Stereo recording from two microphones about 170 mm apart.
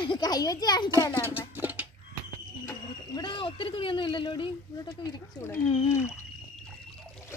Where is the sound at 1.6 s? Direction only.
10° right (ahead or behind).